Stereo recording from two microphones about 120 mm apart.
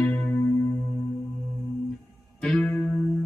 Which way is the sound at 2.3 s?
5° left (ahead or behind).